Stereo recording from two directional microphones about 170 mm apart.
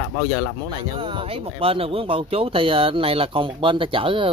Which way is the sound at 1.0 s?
30° right (ahead or behind).